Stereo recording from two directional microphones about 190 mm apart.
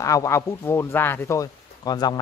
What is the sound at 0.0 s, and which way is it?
Speech, 15° left (ahead or behind).